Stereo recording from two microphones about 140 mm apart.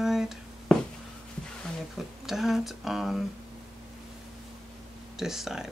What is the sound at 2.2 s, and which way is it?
Speech, centre (ahead or behind).